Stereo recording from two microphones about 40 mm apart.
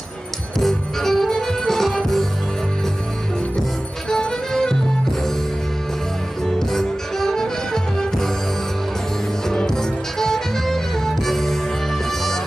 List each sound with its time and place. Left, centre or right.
0.6 s music: centre
4.1 s music: centre
6.4 s music: centre
9.5 s music: centre